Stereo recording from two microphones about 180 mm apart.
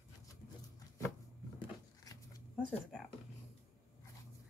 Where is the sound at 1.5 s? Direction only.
20° left (ahead or behind).